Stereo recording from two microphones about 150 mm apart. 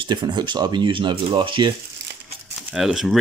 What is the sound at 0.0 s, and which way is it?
Speech, 30° right (ahead or behind).